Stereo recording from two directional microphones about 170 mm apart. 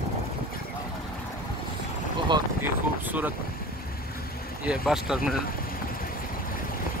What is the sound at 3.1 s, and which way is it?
Vehicle, 10° right (ahead or behind).